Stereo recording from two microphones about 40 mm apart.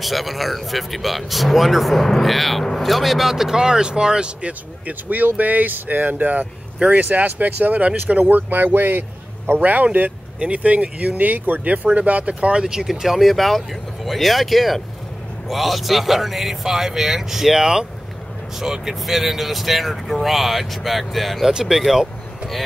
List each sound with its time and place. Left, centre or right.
0.0 s speech: centre
2.9 s speech: centre; by 4.5 s right
4.5 s a man's voice: right; by 21.5 s centre
21.5 s a man's voice: centre